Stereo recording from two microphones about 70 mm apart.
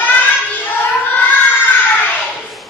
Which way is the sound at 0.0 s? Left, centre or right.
Left.